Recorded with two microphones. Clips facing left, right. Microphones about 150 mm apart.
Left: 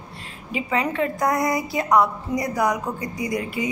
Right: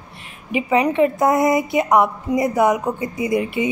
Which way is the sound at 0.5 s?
20° right (ahead or behind).